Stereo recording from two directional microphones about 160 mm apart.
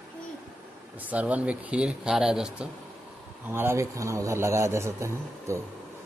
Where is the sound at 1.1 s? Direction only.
10° right (ahead or behind).